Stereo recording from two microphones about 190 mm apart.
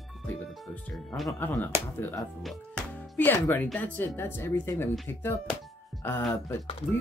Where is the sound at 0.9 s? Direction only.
Centre (ahead or behind).